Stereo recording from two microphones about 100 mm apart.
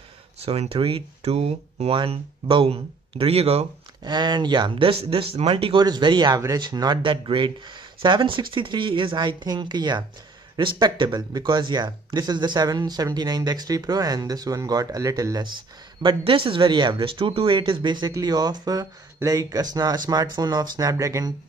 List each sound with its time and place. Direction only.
0.4 s speech: 80° right
2.0 s speech: 60° right (ahead or behind); by 3.6 s 90° right
4.0 s speech: 45° right (ahead or behind); by 5.8 s 65° right (ahead or behind)
5.8 s speech: 45° right (ahead or behind); by 17.6 s 65° right (ahead or behind)
17.6 s speech: 50° right (ahead or behind); by 21.3 s 35° right (ahead or behind)